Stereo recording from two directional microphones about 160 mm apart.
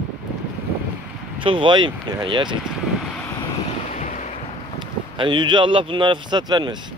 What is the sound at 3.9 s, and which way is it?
Waves, 50° left (ahead or behind).